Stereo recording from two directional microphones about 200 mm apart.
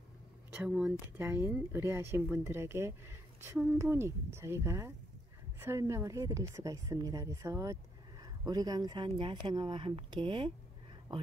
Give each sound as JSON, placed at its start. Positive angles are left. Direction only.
{"t": 0.5, "sound": "a woman's voice", "side_deg": -5}